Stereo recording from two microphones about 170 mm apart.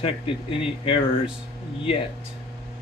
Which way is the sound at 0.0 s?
35° left (ahead or behind).